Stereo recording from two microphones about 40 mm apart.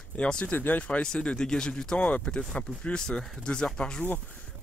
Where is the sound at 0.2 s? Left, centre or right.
Left.